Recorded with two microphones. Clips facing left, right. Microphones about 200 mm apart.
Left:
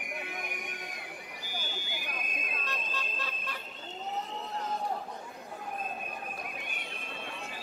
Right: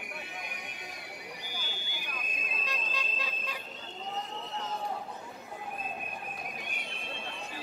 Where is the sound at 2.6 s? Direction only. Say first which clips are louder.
Right 3 dB; 10° right (ahead or behind).